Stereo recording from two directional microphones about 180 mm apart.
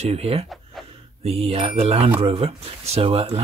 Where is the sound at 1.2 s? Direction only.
35° right (ahead or behind).